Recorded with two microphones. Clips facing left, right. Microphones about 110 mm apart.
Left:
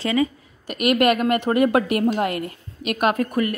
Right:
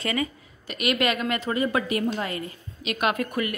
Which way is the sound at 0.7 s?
50° left (ahead or behind).